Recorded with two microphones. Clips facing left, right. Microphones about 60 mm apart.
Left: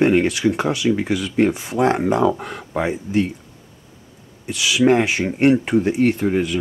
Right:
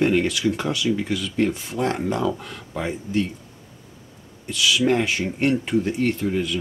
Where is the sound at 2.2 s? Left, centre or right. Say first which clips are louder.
Left 6 dB; left.